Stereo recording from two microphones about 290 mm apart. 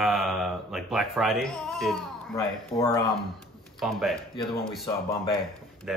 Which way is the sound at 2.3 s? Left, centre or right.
Centre.